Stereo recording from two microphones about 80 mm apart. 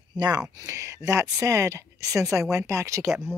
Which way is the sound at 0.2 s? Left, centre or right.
Right.